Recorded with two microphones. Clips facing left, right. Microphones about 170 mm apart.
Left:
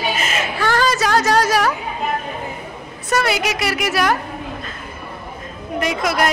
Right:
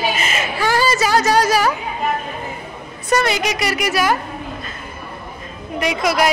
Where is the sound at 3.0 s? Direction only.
5° left (ahead or behind).